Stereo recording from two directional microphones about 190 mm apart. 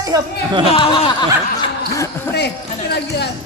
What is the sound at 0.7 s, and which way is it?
Speech, 30° left (ahead or behind).